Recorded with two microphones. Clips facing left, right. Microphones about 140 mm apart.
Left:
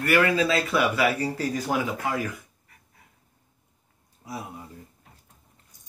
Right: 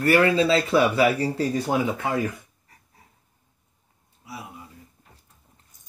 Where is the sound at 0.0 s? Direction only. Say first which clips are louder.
Right 3 dB; 30° right (ahead or behind).